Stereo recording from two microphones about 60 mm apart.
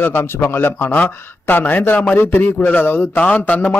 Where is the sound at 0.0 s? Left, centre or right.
Left.